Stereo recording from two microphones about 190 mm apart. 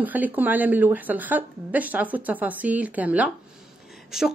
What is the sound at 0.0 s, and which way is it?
Speech, 10° right (ahead or behind).